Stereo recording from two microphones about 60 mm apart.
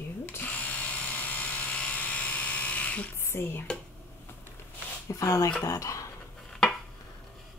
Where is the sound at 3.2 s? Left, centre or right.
Left.